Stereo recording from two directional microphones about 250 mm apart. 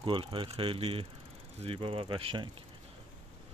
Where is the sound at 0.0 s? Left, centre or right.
Right.